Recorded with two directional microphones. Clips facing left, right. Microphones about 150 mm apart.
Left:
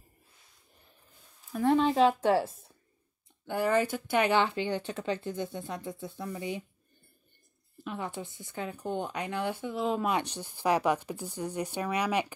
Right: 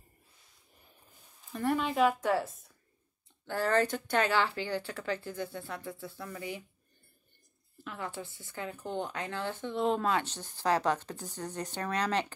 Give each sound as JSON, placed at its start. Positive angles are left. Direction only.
{"t": 1.8, "sound": "speech", "side_deg": 30}
{"t": 3.4, "sound": "speech", "side_deg": 10}
{"t": 7.8, "sound": "a woman's voice", "side_deg": 20}
{"t": 10.0, "sound": "a woman's voice", "side_deg": 15}